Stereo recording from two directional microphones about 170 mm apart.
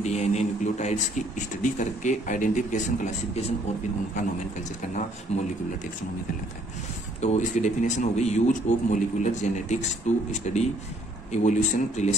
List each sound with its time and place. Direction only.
0.0 s a man's voice: 40° left (ahead or behind)
5.3 s speech: 35° left (ahead or behind)
7.2 s a man's voice: 45° left (ahead or behind)